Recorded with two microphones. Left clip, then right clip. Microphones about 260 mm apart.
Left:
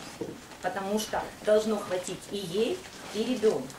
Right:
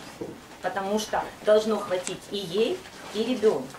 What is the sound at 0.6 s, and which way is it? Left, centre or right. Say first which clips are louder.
Speech: right 3 dB; centre.